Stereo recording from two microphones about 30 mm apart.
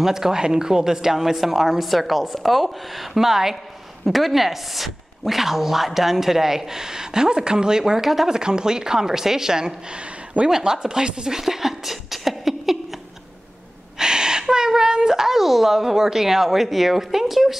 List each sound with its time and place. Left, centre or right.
0.0 s a woman's voice: centre
3.2 s a woman's voice: centre
8.0 s a woman's voice: centre
8.3 s speech: right
11.2 s a sound: centre
13.9 s a woman's voice: right; by 17.6 s centre